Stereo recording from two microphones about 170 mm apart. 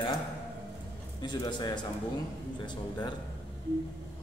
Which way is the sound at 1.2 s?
25° left (ahead or behind).